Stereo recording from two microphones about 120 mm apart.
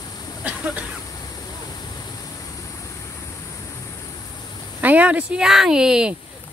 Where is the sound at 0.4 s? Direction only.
10° right (ahead or behind).